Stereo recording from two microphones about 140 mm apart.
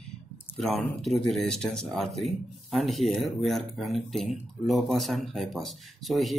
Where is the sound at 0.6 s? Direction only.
Centre (ahead or behind).